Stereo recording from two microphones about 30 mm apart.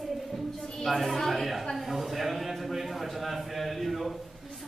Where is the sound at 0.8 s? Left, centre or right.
Centre.